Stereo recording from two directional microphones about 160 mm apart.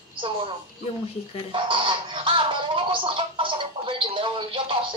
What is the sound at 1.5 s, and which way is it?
Music, 30° right (ahead or behind).